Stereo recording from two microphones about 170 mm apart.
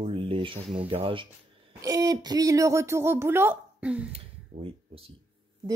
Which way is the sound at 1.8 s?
20° right (ahead or behind).